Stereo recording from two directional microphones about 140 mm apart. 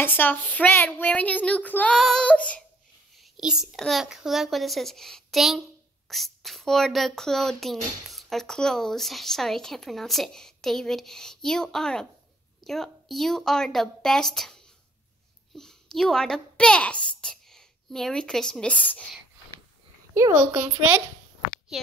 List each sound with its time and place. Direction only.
0.0 s a woman's voice: 15° left (ahead or behind)
3.2 s a child's voice: 5° right (ahead or behind)
20.2 s a child's voice: 20° right (ahead or behind)